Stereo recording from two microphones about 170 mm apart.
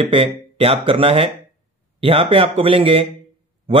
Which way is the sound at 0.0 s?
30° right (ahead or behind).